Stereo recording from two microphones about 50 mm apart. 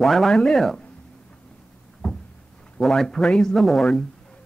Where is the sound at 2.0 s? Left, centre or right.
Centre.